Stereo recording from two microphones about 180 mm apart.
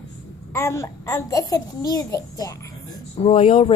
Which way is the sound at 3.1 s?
30° left (ahead or behind).